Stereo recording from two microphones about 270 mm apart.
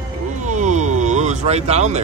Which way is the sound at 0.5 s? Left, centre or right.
Right.